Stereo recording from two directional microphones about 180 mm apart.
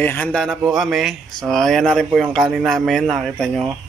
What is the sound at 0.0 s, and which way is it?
Speech, 10° left (ahead or behind).